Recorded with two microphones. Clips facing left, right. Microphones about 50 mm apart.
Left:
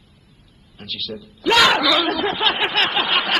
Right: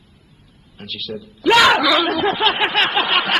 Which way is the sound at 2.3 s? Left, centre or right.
Right.